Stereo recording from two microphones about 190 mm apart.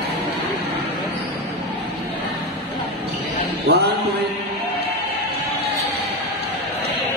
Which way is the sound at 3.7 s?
55° right (ahead or behind).